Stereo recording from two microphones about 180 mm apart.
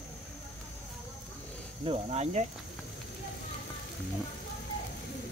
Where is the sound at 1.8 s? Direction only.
35° right (ahead or behind).